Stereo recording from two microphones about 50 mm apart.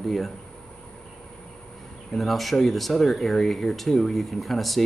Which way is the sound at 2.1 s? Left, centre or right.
Centre.